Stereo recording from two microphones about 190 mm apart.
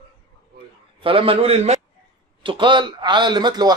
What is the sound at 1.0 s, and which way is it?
A man's voice, 30° right (ahead or behind).